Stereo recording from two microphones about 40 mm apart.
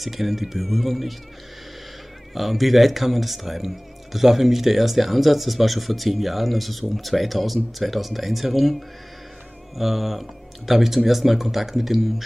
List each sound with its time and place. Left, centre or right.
0.0 s speech: centre
2.3 s speech: centre